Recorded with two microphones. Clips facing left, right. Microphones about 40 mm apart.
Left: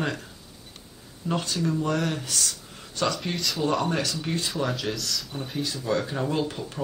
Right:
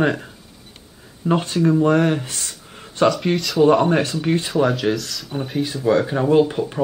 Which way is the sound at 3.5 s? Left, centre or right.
Right.